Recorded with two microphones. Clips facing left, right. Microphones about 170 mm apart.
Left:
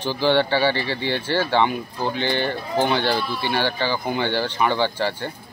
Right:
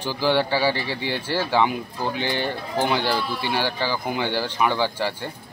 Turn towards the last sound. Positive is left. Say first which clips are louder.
# left 2 dB
turn(degrees=-5)  # may be behind; listen again after turning